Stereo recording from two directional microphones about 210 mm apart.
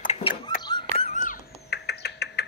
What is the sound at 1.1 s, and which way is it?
Rodents, 40° left (ahead or behind).